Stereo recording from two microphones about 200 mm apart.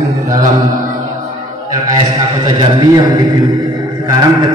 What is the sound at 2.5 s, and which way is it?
A man's voice, 20° right (ahead or behind).